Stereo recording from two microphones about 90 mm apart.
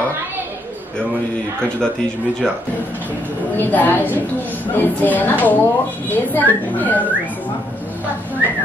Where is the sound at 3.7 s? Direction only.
20° left (ahead or behind).